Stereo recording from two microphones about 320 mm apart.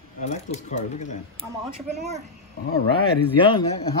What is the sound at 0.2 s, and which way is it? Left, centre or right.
Speech, left.